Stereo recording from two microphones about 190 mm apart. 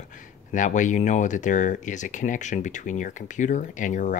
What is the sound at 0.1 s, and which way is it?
Speech, 40° left (ahead or behind).